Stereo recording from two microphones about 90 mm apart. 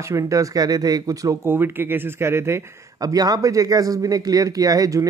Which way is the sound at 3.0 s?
45° right (ahead or behind).